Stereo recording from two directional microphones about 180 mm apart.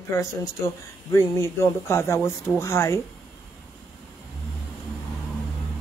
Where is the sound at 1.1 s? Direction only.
15° left (ahead or behind).